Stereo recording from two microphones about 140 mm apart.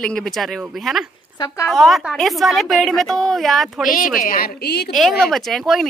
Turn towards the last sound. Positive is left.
turn(degrees=0)  # may be behind; listen again after turning